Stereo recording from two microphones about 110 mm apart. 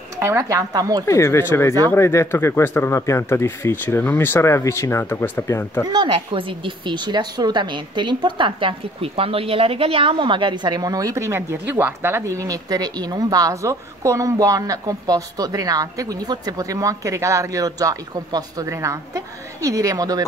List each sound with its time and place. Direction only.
0.2 s a woman's voice: 25° right (ahead or behind)
1.0 s speech: 25° left (ahead or behind)
5.9 s a woman's voice: 45° right (ahead or behind)